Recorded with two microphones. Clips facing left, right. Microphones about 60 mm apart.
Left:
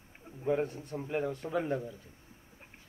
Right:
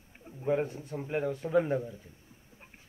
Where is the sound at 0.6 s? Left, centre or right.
Centre.